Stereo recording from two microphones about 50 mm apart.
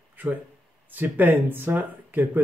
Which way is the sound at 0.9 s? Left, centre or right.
Right.